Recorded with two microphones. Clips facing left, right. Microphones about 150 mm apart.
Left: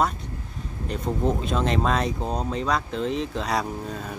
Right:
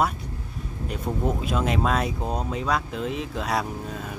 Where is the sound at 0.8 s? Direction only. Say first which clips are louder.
Left 2 dB; 5° right (ahead or behind).